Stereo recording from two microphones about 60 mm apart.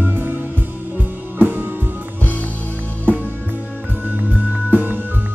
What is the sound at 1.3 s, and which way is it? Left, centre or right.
Music, right.